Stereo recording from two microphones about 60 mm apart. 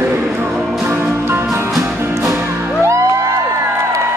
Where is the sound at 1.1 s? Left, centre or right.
Right.